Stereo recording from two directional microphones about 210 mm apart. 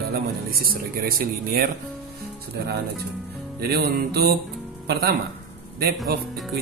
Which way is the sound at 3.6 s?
50° right (ahead or behind).